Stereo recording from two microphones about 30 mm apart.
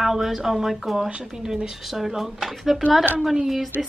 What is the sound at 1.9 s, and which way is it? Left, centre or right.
A woman's voice, centre.